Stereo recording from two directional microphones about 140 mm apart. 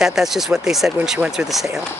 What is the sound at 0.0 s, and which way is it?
Speech, 5° right (ahead or behind).